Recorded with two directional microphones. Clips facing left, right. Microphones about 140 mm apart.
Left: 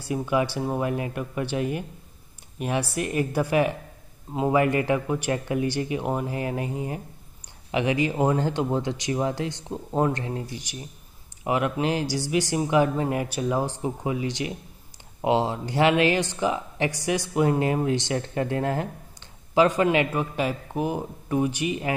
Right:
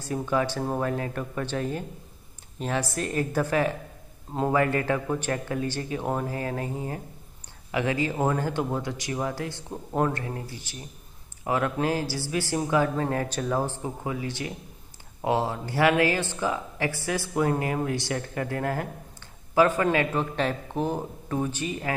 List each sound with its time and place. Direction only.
0.1 s speech: 15° left (ahead or behind)